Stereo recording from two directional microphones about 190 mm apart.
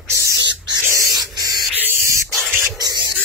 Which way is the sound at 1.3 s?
20° right (ahead or behind).